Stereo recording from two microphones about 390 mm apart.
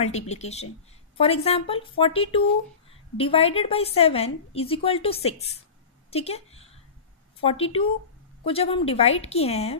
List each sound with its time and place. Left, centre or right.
0.0 s a woman's voice: centre
6.0 s a sound: centre
7.4 s a woman's voice: centre